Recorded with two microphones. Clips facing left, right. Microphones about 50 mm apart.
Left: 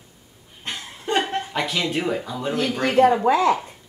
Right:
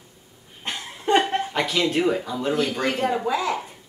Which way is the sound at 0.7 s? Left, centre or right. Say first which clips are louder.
Right 1 dB; centre.